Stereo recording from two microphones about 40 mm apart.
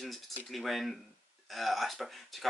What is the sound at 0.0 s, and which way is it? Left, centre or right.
Speech, centre.